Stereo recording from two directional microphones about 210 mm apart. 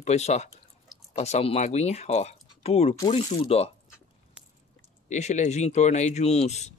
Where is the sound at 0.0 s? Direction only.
30° left (ahead or behind).